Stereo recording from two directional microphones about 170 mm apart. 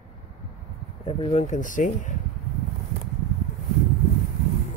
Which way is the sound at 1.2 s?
40° left (ahead or behind).